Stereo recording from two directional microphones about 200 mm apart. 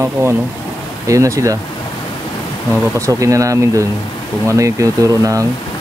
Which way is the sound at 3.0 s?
15° right (ahead or behind).